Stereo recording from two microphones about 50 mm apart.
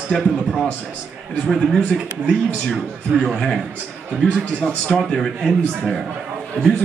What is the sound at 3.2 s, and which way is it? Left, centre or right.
Speech, centre.